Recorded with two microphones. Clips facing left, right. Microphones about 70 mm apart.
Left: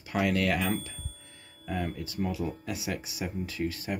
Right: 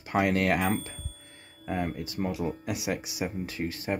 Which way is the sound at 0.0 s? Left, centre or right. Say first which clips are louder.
Right 2 dB; right.